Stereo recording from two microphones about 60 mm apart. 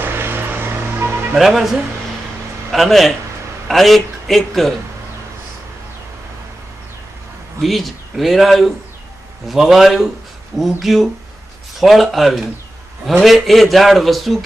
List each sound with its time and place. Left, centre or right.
0.0 s vehicle: right
1.3 s a man's voice: centre
7.6 s a man's voice: centre